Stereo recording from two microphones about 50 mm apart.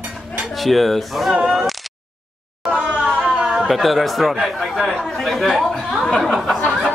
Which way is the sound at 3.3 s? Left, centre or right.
Centre.